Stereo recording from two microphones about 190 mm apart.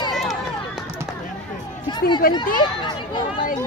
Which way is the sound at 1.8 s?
25° left (ahead or behind).